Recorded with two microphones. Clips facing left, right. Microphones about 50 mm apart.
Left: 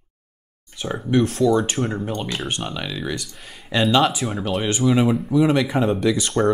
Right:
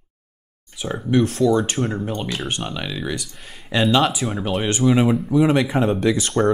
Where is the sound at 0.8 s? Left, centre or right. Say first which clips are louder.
Right 1 dB; centre.